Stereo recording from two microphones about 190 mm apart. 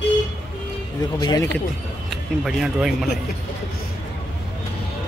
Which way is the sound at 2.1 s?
Centre (ahead or behind).